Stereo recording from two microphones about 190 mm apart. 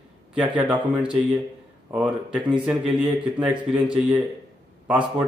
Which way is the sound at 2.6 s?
5° right (ahead or behind).